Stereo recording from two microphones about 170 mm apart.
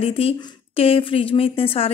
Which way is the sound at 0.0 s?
35° left (ahead or behind).